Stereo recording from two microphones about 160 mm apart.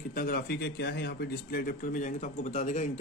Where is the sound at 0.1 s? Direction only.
65° left (ahead or behind).